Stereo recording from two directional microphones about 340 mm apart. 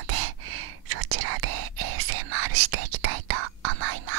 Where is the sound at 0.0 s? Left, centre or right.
Right.